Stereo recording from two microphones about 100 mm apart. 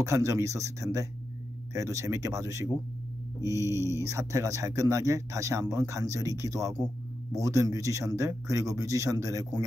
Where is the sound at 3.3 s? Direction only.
35° left (ahead or behind).